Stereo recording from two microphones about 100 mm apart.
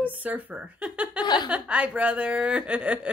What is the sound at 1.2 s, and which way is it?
Speech, 45° left (ahead or behind).